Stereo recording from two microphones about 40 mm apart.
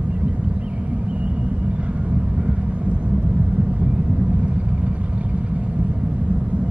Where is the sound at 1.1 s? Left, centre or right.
Right.